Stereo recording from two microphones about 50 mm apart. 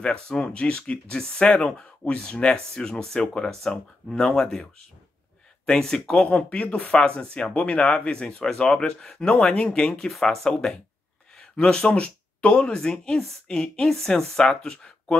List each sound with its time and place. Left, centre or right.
0.0 s speech: centre
5.7 s speech: centre